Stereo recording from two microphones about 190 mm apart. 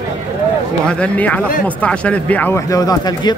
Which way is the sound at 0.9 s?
5° left (ahead or behind).